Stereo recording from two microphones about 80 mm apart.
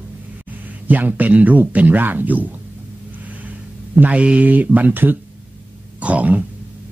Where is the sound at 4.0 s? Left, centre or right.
Centre.